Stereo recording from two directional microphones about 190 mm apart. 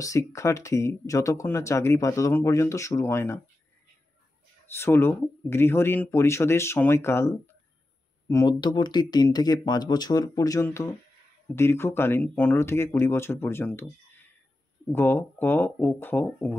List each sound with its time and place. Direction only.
0.0 s speech: 15° left (ahead or behind)
4.7 s speech: 15° left (ahead or behind)
14.9 s speech: 10° left (ahead or behind)